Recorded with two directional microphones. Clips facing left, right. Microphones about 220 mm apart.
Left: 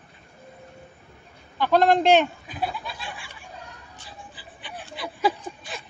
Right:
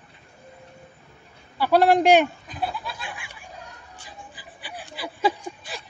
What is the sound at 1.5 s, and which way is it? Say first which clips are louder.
Speech: right 1 dB; 10° right (ahead or behind).